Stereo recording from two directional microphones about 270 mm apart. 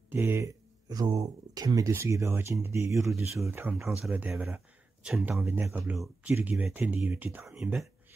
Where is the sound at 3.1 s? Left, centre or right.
Centre.